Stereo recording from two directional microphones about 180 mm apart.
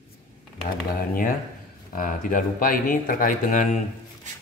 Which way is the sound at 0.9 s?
50° left (ahead or behind).